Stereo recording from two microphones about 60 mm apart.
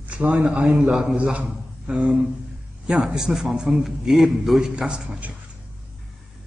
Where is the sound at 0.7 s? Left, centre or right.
Centre.